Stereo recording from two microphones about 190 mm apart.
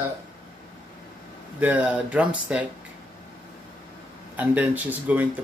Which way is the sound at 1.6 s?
10° right (ahead or behind).